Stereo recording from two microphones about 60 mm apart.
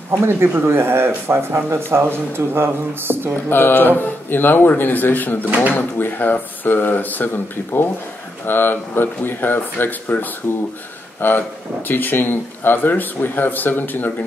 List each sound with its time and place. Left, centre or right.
0.2 s speech: right
3.4 s speech: left
5.4 s speech: right
5.7 s speech: left
8.5 s speech: left